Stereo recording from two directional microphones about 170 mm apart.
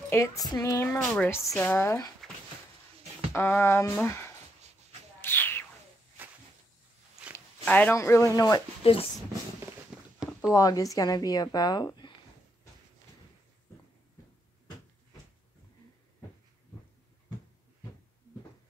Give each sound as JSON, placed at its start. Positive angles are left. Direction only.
{"t": 0.1, "sound": "a woman's voice", "side_deg": 15}
{"t": 3.3, "sound": "speech", "side_deg": 15}
{"t": 5.2, "sound": "a sound", "side_deg": 15}
{"t": 7.3, "sound": "speech", "side_deg": 10}
{"t": 8.8, "sound": "speech", "side_deg": 35}
{"t": 9.9, "sound": "a sound", "side_deg": -5}
{"t": 10.5, "sound": "a woman's voice", "side_deg": 20}